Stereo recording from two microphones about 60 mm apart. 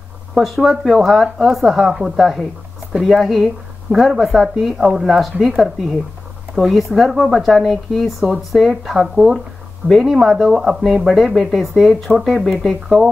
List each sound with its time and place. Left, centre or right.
0.3 s speech: centre
9.8 s speech: centre